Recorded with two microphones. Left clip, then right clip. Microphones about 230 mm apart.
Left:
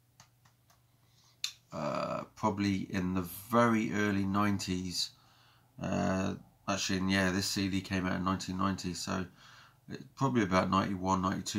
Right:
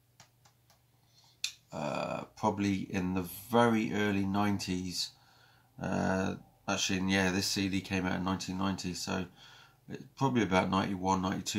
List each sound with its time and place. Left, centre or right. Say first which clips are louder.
1.7 s speech: left 1 dB; centre
5.9 s speech: right 1 dB; centre